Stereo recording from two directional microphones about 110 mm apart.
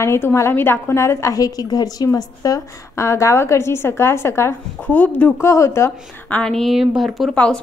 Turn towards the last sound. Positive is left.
turn(degrees=10)  # may be behind; listen again after turning